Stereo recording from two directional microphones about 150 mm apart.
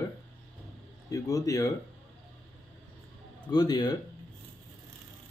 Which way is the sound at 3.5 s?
25° left (ahead or behind).